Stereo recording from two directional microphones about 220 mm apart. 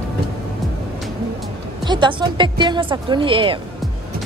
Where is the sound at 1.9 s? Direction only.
20° right (ahead or behind).